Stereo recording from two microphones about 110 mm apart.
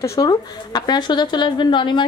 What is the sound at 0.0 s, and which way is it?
Speech, 25° left (ahead or behind).